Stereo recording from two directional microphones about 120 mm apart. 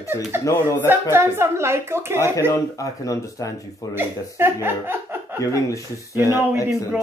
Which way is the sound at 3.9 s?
20° right (ahead or behind).